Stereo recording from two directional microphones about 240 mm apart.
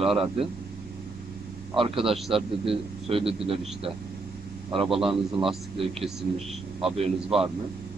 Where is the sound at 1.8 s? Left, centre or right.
Right.